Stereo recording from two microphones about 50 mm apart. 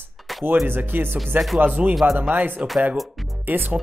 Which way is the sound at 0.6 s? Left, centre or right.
Right.